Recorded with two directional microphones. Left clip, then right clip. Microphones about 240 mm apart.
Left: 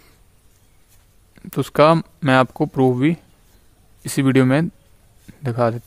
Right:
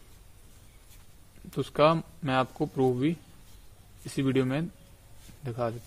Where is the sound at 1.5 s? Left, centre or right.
Left.